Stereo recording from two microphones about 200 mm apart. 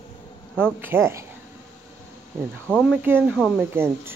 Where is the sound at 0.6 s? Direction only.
10° right (ahead or behind).